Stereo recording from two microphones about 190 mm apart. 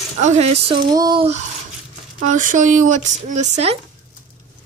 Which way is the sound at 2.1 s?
45° right (ahead or behind).